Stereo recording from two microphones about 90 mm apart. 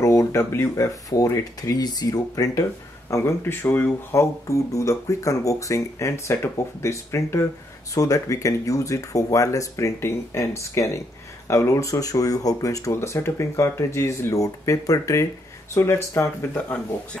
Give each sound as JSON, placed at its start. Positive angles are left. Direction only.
{"t": 0.0, "sound": "speech", "side_deg": 35}
{"t": 3.1, "sound": "speech", "side_deg": 30}